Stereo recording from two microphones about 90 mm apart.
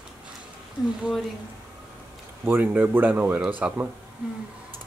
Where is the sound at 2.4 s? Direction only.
20° right (ahead or behind).